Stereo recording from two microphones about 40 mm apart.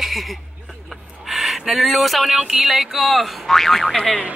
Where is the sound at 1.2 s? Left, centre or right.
Centre.